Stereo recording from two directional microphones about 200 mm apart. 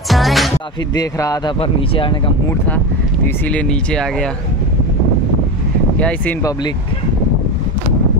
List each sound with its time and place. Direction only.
0.1 s music: centre (ahead or behind)
0.9 s a man's voice: 15° left (ahead or behind)
3.4 s speech: 5° left (ahead or behind)
5.9 s speech: 5° left (ahead or behind)